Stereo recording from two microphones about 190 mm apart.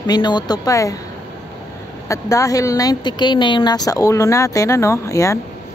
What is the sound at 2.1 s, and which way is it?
A woman's voice, 15° left (ahead or behind).